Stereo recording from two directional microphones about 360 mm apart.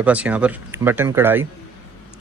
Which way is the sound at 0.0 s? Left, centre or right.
Centre.